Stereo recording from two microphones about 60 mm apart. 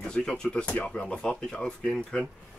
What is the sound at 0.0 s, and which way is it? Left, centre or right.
Speech, centre.